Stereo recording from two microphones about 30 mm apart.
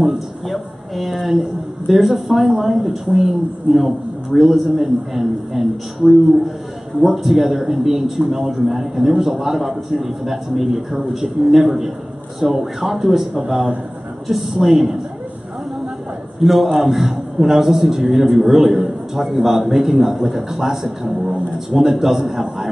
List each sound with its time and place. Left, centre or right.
0.5 s a man's voice: centre
13.4 s speech: right
14.2 s a man's voice: centre
16.3 s a man's voice: centre